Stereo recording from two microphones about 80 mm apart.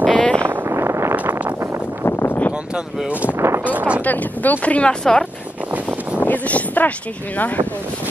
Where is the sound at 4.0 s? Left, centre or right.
Left.